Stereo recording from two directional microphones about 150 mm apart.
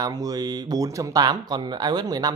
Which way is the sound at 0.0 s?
25° right (ahead or behind).